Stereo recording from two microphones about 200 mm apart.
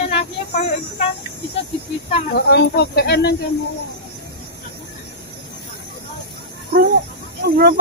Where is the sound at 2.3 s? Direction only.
55° left (ahead or behind).